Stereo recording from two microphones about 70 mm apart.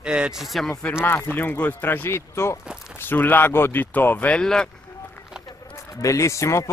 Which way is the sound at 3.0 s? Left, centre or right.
Left.